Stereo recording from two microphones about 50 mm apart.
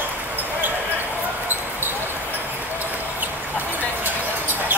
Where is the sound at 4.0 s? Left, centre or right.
Right.